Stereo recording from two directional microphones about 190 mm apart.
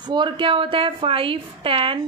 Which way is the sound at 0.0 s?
25° right (ahead or behind).